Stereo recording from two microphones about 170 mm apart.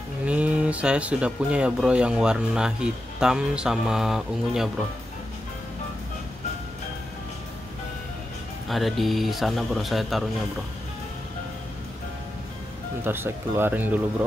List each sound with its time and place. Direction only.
0.3 s speech: 5° right (ahead or behind)
8.6 s speech: centre (ahead or behind)
13.0 s speech: 15° right (ahead or behind)